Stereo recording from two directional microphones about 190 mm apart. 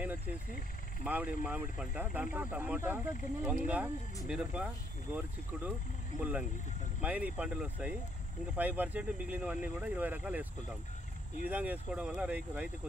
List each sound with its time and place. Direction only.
0.0 s cricket: 5° right (ahead or behind)
1.0 s speech: 5° right (ahead or behind)
11.4 s speech: 10° right (ahead or behind)